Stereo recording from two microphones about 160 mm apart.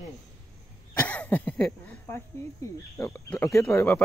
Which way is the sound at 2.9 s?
20° left (ahead or behind).